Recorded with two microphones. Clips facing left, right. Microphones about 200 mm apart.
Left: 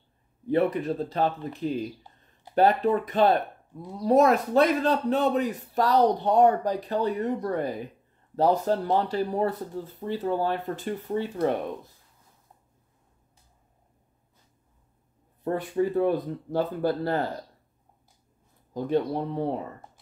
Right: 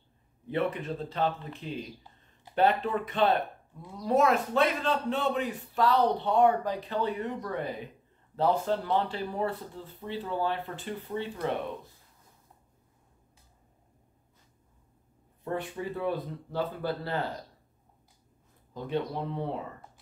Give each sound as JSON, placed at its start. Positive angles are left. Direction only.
{"t": 0.5, "sound": "a man's voice", "side_deg": 40}
{"t": 15.4, "sound": "speech", "side_deg": 40}
{"t": 18.7, "sound": "a man's voice", "side_deg": 40}